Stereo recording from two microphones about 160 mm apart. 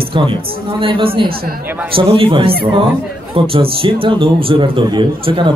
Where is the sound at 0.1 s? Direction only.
35° right (ahead or behind).